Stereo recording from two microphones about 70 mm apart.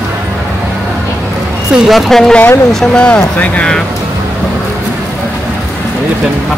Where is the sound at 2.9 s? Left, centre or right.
Centre.